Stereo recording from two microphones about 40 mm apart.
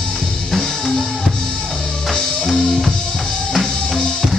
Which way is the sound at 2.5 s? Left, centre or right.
Centre.